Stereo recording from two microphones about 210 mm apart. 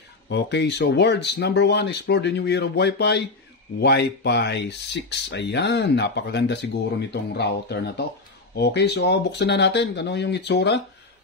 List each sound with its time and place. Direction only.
0.3 s speech: 55° left (ahead or behind)